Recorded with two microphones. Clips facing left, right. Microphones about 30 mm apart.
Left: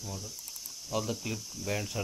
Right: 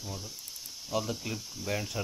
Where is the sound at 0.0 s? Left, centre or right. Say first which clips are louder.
Right 1 dB; centre.